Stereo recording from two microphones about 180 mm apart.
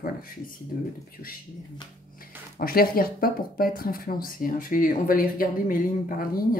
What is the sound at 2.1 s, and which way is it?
Speech, 55° left (ahead or behind).